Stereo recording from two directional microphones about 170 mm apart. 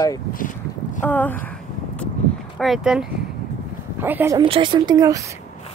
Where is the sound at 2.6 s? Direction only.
Centre (ahead or behind).